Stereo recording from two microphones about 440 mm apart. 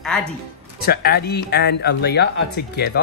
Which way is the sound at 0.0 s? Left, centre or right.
Centre.